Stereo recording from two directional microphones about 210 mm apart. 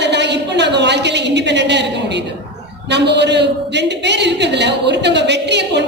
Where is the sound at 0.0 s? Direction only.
55° right (ahead or behind).